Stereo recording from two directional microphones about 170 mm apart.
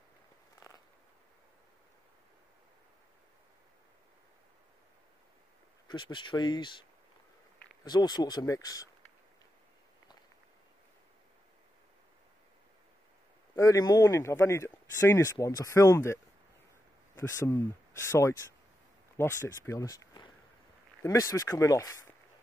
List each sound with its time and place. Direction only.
5.9 s speech: 25° left (ahead or behind)
13.6 s speech: 20° left (ahead or behind)
19.1 s speech: 15° left (ahead or behind)